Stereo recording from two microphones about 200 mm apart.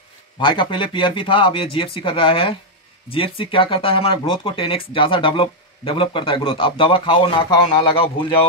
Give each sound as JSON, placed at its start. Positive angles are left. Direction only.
{"t": 0.4, "sound": "speech", "side_deg": 25}